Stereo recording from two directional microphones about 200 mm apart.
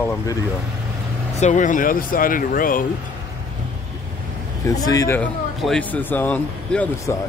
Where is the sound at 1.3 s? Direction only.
35° left (ahead or behind).